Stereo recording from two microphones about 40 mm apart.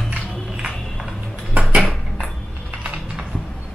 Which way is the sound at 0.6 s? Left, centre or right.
Right.